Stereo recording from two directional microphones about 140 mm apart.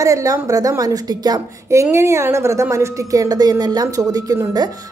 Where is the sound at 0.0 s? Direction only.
25° right (ahead or behind).